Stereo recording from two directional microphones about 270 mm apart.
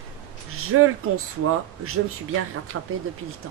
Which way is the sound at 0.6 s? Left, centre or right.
Right.